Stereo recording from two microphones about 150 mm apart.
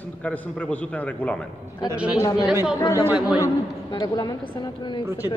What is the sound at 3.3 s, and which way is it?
A woman's voice, 25° left (ahead or behind).